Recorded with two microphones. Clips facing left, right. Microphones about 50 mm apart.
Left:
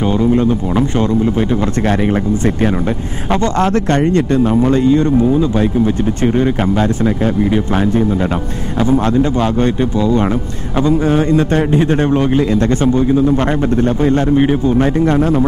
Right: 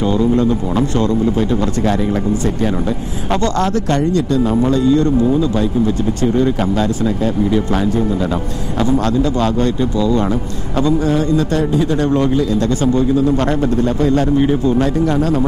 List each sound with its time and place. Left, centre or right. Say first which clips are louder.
0.0 s speech: left 1 dB; left
3.5 s a man's voice: left 3 dB; left
3.9 s a man's voice: left 2 dB; left
4.5 s a man's voice: left 1 dB; left
8.7 s a man's voice: left 2 dB; left
13.8 s a man's voice: left 2 dB; left